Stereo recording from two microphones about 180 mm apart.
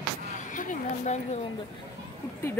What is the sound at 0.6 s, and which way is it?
Speech, 40° left (ahead or behind).